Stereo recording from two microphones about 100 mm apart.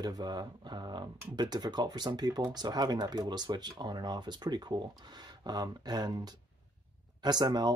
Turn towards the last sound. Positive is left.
turn(degrees=-45)  # may be behind; listen again after turning